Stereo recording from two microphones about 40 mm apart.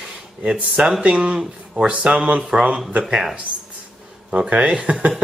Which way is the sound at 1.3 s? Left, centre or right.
Centre.